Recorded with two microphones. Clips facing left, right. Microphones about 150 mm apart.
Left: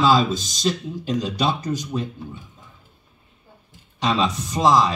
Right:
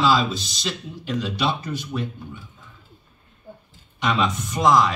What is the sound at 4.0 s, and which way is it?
Speech, 35° left (ahead or behind).